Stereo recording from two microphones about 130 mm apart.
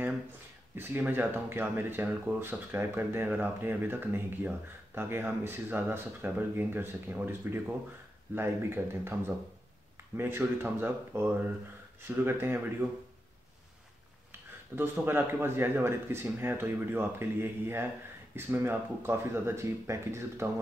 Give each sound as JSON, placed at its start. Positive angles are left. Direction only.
{"t": 0.7, "sound": "speech", "side_deg": -15}
{"t": 14.8, "sound": "speech", "side_deg": -15}